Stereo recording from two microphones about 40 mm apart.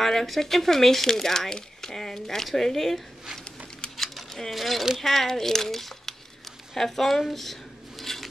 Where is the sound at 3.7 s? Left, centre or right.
Centre.